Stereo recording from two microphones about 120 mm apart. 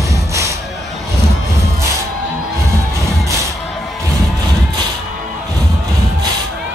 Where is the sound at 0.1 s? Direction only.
25° right (ahead or behind).